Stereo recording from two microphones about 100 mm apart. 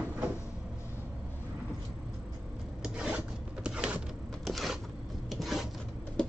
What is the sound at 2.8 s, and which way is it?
Filing, 10° right (ahead or behind).